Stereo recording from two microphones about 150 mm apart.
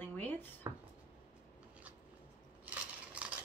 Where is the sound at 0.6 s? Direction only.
25° right (ahead or behind).